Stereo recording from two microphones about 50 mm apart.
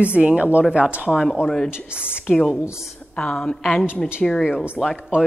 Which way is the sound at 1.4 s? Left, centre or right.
Centre.